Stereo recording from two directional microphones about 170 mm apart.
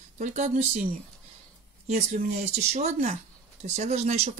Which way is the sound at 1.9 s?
40° right (ahead or behind).